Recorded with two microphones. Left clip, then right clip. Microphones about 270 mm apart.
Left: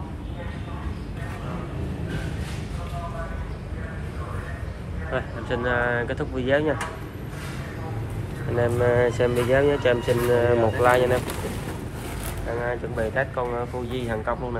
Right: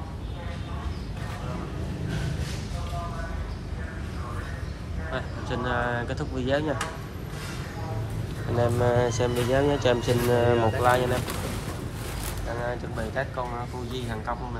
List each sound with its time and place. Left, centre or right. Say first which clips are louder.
5.1 s speech: left 5 dB; right
8.5 s speech: left 3 dB; centre
12.6 s speech: left 7 dB; centre